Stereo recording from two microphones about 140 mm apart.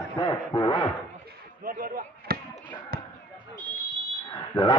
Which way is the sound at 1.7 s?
90° right.